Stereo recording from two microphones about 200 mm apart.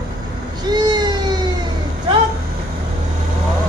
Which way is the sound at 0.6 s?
20° right (ahead or behind).